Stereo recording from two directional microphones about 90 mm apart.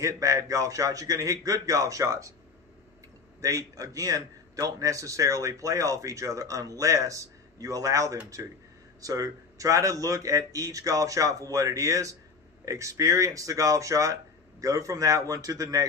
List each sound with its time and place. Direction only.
0.0 s a man's voice: 35° right (ahead or behind)
3.3 s a man's voice: 40° right (ahead or behind)